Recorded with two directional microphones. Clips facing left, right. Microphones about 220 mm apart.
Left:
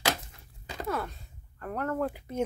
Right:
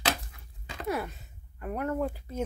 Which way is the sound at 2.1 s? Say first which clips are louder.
Left 2 dB; 15° left (ahead or behind).